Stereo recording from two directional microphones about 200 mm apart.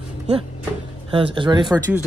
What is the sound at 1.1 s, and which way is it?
Speech, 25° right (ahead or behind).